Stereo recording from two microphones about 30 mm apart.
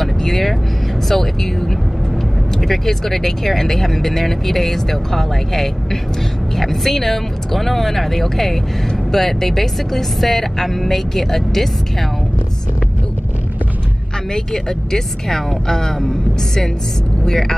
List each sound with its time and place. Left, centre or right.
0.0 s vehicle: centre
1.0 s speech: centre
2.7 s speech: centre
14.3 s speech: centre
17.2 s speech: centre